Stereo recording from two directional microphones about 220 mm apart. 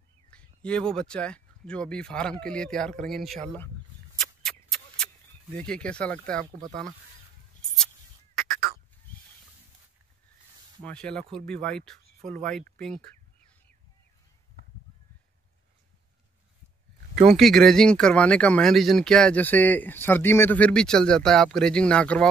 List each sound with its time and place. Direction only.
0.3 s speech: 5° left (ahead or behind)
4.2 s a sound: centre (ahead or behind)
5.5 s speech: 5° left (ahead or behind)
10.8 s speech: 5° left (ahead or behind)
12.2 s speech: 40° right (ahead or behind)
12.4 s speech: 5° left (ahead or behind)
17.3 s speech: centre (ahead or behind)